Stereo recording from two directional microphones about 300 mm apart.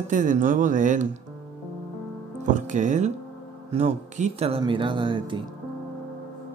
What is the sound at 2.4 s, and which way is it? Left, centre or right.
Speech, right.